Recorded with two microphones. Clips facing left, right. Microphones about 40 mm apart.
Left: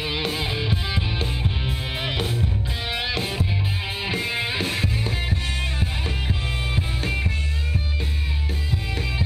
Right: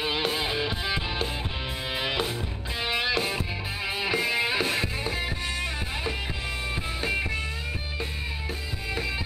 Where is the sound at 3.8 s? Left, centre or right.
Centre.